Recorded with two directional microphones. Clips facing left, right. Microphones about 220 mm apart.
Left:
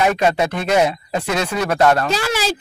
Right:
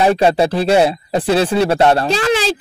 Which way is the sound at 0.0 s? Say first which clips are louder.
Right 4 dB; 30° right (ahead or behind).